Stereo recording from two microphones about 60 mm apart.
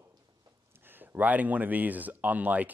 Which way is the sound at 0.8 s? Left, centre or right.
Right.